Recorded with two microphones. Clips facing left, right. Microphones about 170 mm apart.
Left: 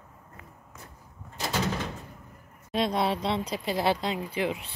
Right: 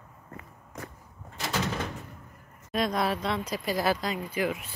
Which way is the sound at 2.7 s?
25° left (ahead or behind).